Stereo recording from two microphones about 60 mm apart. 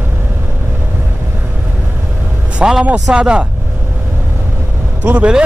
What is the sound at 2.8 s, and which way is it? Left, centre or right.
Speech, centre.